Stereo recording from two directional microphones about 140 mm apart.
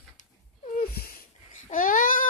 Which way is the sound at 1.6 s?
70° left (ahead or behind).